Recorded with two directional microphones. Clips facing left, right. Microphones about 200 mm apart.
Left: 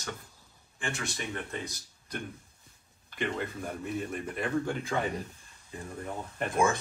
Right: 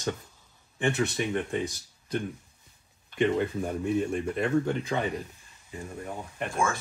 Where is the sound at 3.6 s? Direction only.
30° right (ahead or behind).